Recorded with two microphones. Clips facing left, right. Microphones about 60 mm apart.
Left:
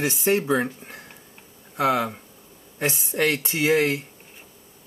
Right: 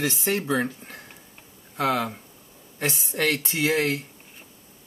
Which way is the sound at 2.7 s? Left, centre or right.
Left.